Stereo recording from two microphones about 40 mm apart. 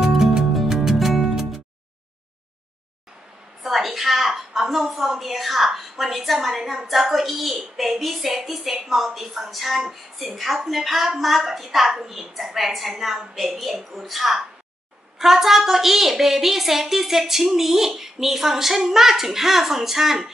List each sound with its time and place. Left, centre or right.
0.0 s music: centre
3.6 s a woman's voice: centre